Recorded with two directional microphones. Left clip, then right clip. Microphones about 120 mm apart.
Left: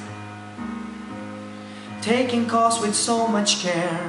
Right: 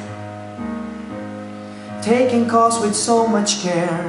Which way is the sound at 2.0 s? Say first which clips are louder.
Right 6 dB; centre (ahead or behind).